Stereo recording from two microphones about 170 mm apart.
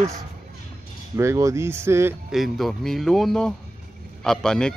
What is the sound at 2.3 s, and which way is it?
Speech, centre (ahead or behind).